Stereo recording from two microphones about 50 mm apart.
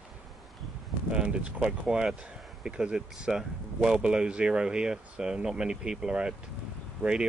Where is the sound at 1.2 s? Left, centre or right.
Right.